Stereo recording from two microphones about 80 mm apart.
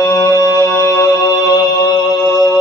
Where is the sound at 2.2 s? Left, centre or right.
Left.